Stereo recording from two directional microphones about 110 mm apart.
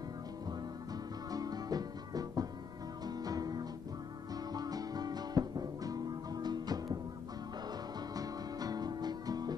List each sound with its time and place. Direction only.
1.3 s music: 35° right (ahead or behind)
8.1 s music: 35° right (ahead or behind)